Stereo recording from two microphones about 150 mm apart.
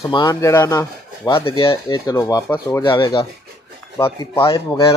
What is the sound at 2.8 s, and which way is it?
Speech, 30° left (ahead or behind).